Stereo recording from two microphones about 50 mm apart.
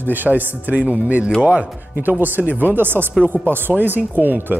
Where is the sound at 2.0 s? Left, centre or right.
Right.